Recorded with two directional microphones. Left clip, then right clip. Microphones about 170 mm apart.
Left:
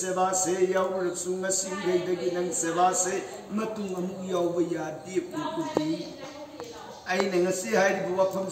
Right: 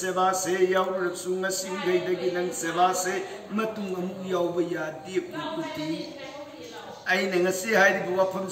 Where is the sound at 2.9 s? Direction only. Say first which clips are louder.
Even; centre (ahead or behind).